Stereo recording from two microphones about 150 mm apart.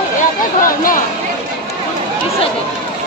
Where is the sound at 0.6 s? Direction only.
65° left (ahead or behind).